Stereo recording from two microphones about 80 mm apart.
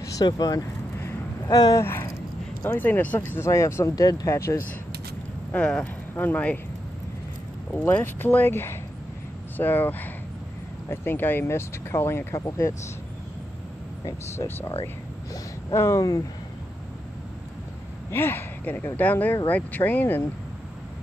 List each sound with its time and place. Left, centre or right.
0.2 s speech: left
1.8 s speech: left
5.5 s speech: centre
7.8 s speech: left
14.3 s speech: left
15.7 s speech: left
18.1 s speech: left